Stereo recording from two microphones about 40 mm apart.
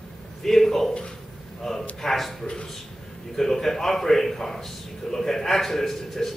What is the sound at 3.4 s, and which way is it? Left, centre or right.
A man's voice, centre.